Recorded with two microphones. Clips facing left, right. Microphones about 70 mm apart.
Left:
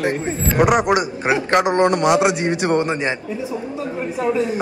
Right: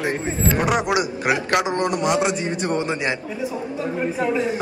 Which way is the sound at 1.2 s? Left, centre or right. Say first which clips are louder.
Left 3 dB; left.